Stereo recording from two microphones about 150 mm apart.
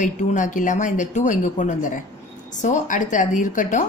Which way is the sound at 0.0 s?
60° left (ahead or behind).